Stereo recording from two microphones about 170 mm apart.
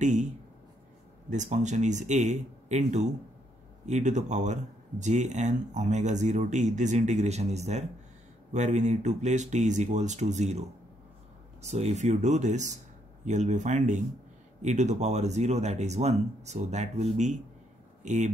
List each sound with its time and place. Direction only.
0.0 s speech: 45° right (ahead or behind)
1.3 s speech: 45° right (ahead or behind)
11.6 s speech: 40° right (ahead or behind)